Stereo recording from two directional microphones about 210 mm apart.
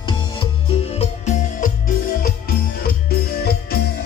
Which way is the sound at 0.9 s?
35° left (ahead or behind).